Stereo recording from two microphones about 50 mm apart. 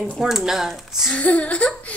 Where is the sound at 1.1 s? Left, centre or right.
Left.